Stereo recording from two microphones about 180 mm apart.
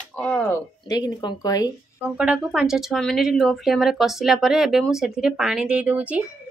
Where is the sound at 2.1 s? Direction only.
5° right (ahead or behind).